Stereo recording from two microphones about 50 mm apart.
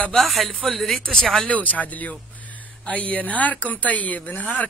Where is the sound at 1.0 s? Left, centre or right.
Centre.